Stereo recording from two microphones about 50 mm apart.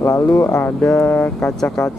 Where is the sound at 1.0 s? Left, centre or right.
Left.